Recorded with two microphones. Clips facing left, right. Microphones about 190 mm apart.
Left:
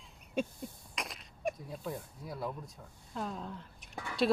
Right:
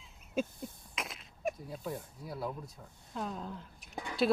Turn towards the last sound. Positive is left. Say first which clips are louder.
# right 1 dB
turn(degrees=-20)  # may be behind; listen again after turning